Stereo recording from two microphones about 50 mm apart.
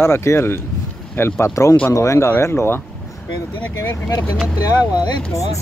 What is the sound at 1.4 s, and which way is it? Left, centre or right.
Speech, left.